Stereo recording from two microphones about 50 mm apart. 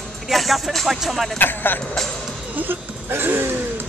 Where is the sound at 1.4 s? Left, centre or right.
Left.